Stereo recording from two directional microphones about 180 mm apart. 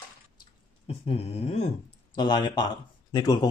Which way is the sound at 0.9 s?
35° left (ahead or behind).